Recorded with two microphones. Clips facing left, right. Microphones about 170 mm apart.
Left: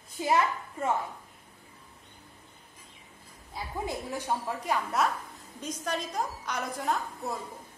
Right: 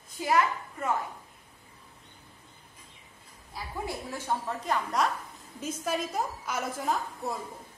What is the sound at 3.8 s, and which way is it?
A woman's voice, 15° left (ahead or behind).